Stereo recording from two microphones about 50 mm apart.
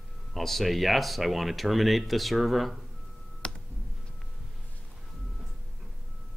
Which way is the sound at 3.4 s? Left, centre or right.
Left.